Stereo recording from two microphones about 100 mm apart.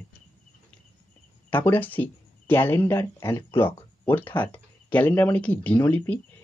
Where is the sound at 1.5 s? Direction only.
20° left (ahead or behind).